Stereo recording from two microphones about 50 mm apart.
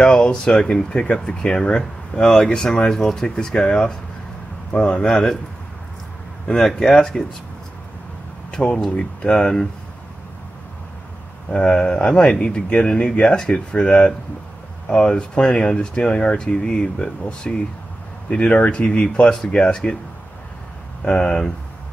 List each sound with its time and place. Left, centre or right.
0.0 s speech: centre
6.4 s speech: centre
8.5 s speech: left
11.5 s speech: centre
21.0 s speech: centre